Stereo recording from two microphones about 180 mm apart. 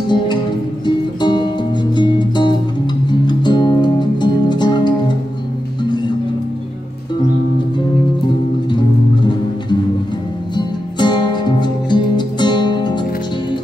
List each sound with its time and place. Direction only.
0.1 s music: 25° left (ahead or behind)
8.6 s music: 25° left (ahead or behind)